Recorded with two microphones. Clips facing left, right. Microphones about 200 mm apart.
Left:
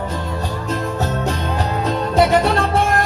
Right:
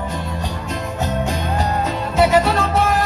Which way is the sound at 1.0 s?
15° right (ahead or behind).